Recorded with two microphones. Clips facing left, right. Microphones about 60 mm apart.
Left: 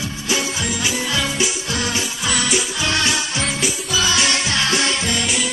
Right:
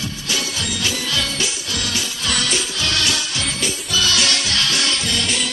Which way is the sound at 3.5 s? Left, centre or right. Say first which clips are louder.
Left 2 dB; centre.